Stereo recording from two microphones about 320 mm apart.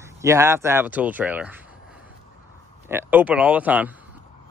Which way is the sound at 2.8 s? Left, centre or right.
Centre.